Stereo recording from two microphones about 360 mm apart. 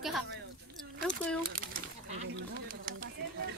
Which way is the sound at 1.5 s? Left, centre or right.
Right.